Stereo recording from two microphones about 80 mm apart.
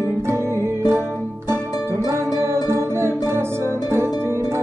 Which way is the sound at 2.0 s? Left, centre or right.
Right.